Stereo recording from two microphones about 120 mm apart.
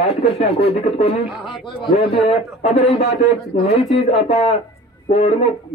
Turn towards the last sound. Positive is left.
turn(degrees=60)  # may be behind; listen again after turning